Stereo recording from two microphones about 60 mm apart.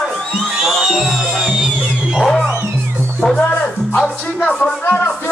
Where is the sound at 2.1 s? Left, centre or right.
Centre.